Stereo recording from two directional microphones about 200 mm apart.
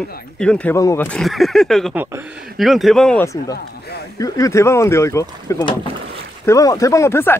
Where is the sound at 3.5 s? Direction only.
55° left (ahead or behind).